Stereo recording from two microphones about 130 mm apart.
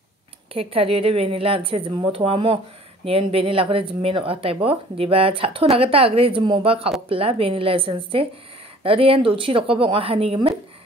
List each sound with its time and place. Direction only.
0.6 s speech: 45° right (ahead or behind)